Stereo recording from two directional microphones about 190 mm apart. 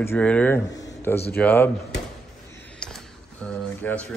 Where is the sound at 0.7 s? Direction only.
20° left (ahead or behind).